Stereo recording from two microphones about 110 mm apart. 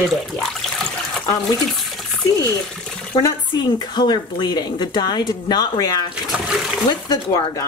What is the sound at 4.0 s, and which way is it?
A woman's voice, 40° left (ahead or behind).